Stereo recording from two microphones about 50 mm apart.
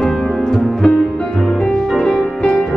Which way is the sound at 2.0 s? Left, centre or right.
Centre.